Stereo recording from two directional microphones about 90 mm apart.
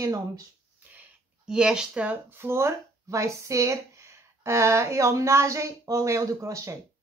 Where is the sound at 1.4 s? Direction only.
5° right (ahead or behind); by 6.7 s 35° right (ahead or behind).